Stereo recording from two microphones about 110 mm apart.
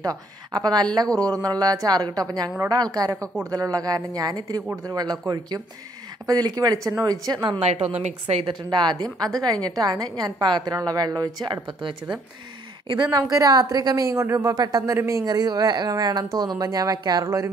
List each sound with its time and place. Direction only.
0.0 s a woman's voice: 35° right (ahead or behind)
7.6 s a woman's voice: 75° right (ahead or behind)
8.5 s a woman's voice: 45° right (ahead or behind)